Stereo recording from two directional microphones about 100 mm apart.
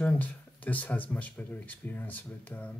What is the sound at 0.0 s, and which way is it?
Speech, 15° left (ahead or behind).